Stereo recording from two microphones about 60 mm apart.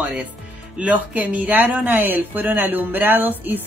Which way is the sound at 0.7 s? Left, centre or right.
Right.